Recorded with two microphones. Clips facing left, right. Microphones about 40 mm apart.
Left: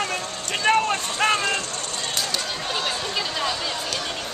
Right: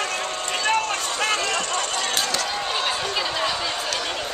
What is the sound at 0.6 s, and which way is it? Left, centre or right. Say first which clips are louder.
Vehicle: left 4 dB; left.